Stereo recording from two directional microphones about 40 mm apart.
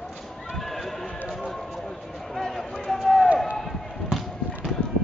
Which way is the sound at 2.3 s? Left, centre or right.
Centre.